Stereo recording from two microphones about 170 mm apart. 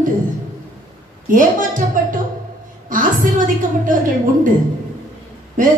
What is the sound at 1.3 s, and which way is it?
A woman's voice, 50° right (ahead or behind).